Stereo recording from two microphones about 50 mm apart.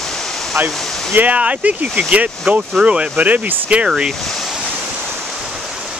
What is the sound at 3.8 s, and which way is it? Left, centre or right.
Speech, centre.